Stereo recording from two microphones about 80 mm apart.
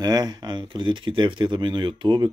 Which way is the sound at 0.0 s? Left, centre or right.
Right.